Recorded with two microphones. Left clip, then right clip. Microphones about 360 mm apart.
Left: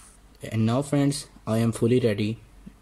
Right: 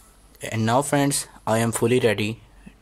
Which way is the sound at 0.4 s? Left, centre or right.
Centre.